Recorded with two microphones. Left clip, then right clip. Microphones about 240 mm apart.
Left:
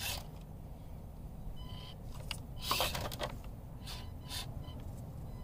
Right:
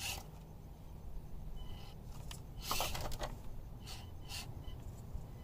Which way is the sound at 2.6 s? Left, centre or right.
Centre.